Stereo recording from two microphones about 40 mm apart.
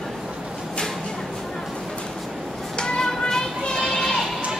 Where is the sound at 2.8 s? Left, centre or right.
Left.